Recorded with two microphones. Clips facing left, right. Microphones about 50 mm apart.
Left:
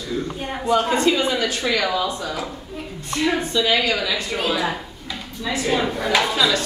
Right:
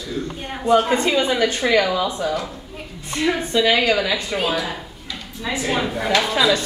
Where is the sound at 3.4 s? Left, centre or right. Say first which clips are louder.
Right 2 dB; right.